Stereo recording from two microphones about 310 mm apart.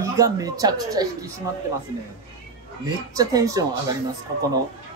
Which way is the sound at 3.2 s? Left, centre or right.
Centre.